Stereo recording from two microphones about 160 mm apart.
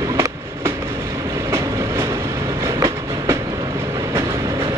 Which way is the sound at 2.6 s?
20° right (ahead or behind).